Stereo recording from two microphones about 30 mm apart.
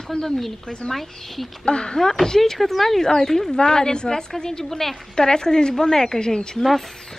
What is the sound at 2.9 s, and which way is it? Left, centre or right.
Speech, centre.